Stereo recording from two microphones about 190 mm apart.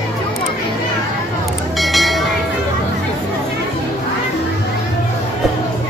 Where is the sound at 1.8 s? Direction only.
Centre (ahead or behind).